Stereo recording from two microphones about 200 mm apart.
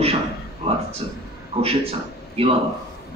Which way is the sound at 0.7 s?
30° right (ahead or behind).